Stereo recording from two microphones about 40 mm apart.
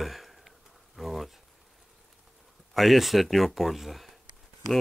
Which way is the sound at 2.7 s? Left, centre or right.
Centre.